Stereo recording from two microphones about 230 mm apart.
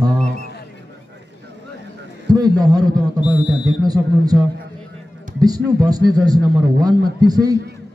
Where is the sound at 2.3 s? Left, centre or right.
Centre.